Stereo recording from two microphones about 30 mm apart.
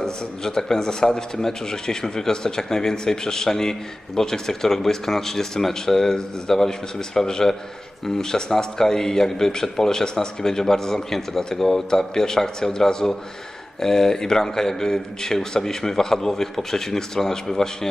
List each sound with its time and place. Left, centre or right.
0.0 s a man's voice: centre